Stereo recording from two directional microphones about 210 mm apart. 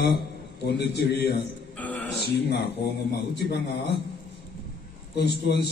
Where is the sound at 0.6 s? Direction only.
50° left (ahead or behind).